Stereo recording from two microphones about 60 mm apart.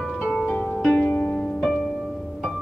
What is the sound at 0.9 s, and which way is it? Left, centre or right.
Harp, left.